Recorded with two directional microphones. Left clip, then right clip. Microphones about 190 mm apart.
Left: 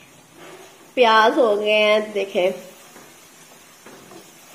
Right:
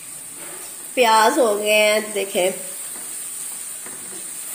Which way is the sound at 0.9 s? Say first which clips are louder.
Even; 20° right (ahead or behind).